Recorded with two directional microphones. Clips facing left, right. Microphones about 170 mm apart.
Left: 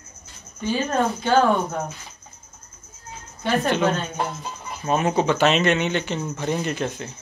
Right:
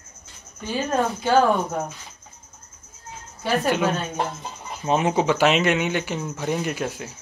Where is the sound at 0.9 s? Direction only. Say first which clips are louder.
Right 1 dB; 5° right (ahead or behind).